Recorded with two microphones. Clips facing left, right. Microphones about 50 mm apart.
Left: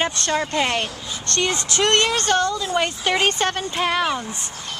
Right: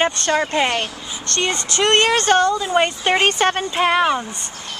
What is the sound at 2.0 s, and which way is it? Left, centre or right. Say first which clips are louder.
Speech: right 4 dB; right.